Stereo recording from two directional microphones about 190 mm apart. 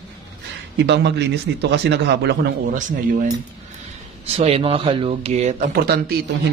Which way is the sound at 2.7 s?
45° right (ahead or behind).